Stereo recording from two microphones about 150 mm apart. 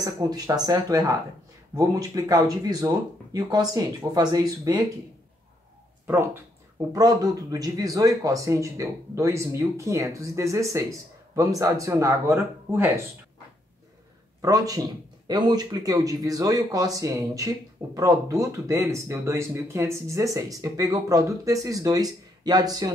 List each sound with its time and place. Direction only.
0.0 s speech: 25° right (ahead or behind)
6.0 s speech: 15° right (ahead or behind)
6.9 s speech: 25° right (ahead or behind)
14.4 s speech: 25° right (ahead or behind)